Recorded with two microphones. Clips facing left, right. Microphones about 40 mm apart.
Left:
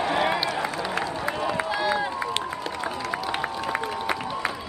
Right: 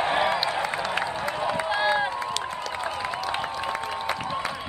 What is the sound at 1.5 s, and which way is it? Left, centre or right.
Run, centre.